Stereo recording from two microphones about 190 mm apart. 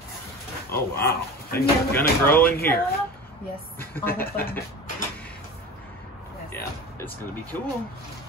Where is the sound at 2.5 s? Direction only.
50° left (ahead or behind).